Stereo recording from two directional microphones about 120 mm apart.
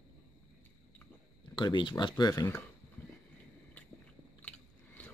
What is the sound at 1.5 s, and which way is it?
Speech, 40° left (ahead or behind).